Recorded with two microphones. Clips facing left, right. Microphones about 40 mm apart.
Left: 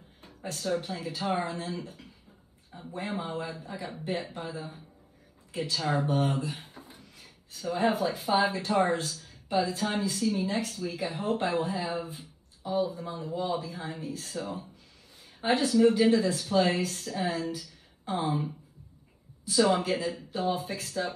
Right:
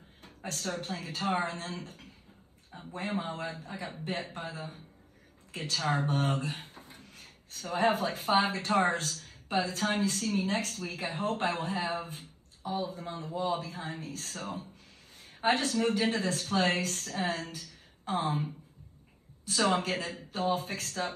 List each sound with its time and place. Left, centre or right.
0.2 s speech: right
19.4 s speech: right